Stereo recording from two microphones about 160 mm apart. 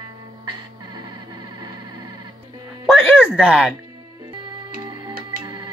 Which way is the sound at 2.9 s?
5° right (ahead or behind).